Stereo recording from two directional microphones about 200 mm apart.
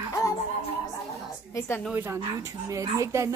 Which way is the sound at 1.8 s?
10° right (ahead or behind).